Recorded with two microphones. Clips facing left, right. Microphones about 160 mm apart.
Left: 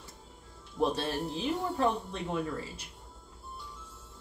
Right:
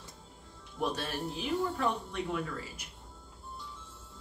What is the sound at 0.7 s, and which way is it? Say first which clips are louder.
Speech: left 4 dB; 25° left (ahead or behind).